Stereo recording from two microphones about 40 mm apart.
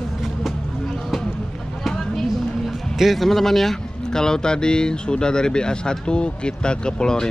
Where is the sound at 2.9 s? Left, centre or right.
Centre.